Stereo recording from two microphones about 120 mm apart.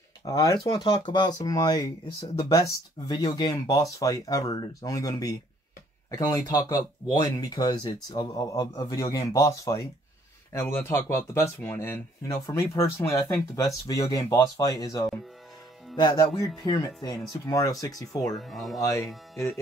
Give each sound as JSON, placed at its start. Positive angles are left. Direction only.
{"t": 0.2, "sound": "speech", "side_deg": 30}
{"t": 18.3, "sound": "speech", "side_deg": 0}
{"t": 18.8, "sound": "speech", "side_deg": 30}